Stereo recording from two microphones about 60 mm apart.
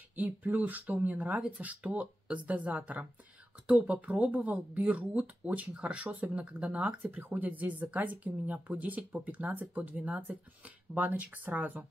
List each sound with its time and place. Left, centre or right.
0.1 s speech: right